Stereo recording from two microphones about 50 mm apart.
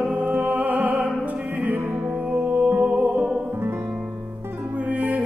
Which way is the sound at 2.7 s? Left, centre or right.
Right.